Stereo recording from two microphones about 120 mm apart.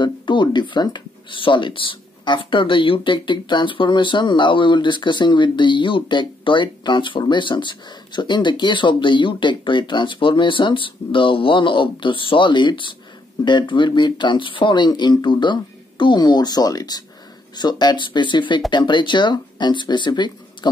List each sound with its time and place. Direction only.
0.0 s speech: 40° left (ahead or behind)